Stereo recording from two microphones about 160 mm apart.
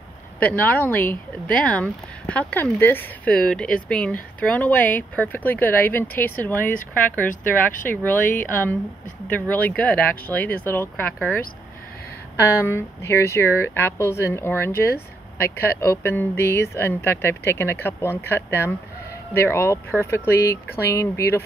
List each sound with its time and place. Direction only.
0.4 s speech: 10° left (ahead or behind)
7.2 s speech: 55° left (ahead or behind)
7.9 s speech: 10° left (ahead or behind)
12.4 s speech: 15° left (ahead or behind)